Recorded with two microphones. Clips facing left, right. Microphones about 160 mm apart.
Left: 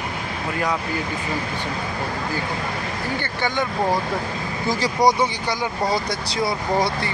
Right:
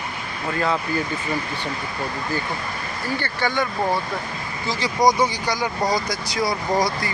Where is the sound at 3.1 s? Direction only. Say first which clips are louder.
Right 1 dB; 20° left (ahead or behind).